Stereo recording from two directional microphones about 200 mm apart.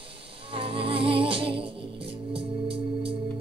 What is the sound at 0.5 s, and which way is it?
Music, 25° right (ahead or behind).